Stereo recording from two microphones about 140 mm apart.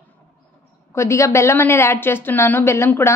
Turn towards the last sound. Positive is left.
turn(degrees=15)  # may be behind; listen again after turning